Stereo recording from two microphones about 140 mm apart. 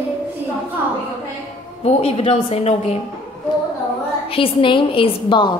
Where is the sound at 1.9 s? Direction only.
50° left (ahead or behind).